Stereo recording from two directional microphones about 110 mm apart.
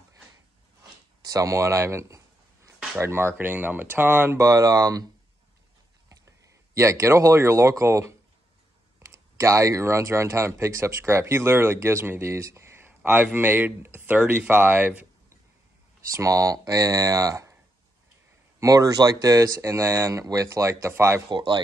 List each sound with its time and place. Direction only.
1.2 s a sound: 30° right (ahead or behind)
3.0 s speech: 20° right (ahead or behind)
4.4 s speech: 30° right (ahead or behind)
6.0 s speech: 25° right (ahead or behind)
16.1 s speech: 30° right (ahead or behind)
18.6 s speech: 30° right (ahead or behind)
21.3 s speech: 45° right (ahead or behind)